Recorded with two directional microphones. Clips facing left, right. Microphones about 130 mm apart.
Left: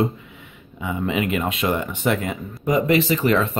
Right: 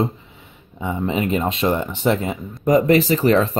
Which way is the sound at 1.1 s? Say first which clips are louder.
Right 2 dB; 35° right (ahead or behind).